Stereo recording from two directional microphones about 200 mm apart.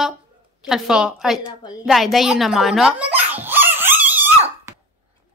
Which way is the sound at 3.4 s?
10° right (ahead or behind).